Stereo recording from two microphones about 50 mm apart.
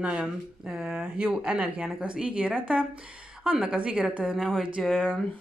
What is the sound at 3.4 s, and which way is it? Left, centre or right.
A woman's voice, centre.